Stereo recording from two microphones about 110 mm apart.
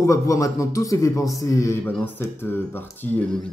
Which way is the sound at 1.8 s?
15° left (ahead or behind).